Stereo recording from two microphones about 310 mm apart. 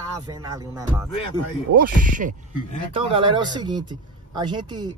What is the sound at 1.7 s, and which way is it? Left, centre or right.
A man's voice, right.